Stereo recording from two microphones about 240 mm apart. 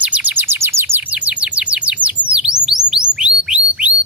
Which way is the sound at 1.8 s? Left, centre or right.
Centre.